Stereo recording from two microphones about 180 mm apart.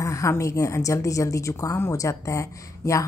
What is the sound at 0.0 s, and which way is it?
Speech, 15° left (ahead or behind).